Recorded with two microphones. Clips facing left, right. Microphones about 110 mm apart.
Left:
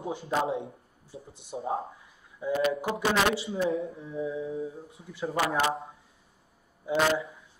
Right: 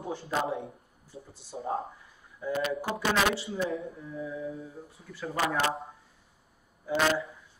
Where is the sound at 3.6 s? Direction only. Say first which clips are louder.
Left 5 dB; 25° left (ahead or behind).